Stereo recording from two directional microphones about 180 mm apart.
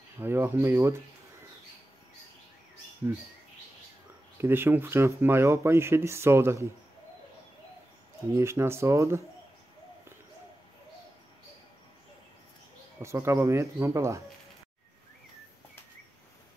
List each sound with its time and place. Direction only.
0.2 s speech: 10° right (ahead or behind)
4.4 s speech: 10° right (ahead or behind)
8.4 s speech: 15° right (ahead or behind)
13.0 s speech: 15° right (ahead or behind)